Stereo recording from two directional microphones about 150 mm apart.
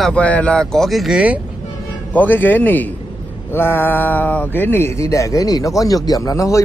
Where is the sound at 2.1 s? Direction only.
10° left (ahead or behind).